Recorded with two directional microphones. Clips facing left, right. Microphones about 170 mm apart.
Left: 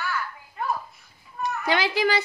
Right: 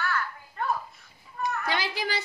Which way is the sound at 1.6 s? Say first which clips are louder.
Left 7 dB; 90° left.